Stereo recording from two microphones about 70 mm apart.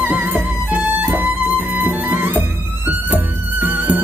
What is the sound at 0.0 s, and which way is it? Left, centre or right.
Music, right.